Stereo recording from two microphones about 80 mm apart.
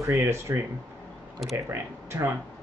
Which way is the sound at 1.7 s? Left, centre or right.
Right.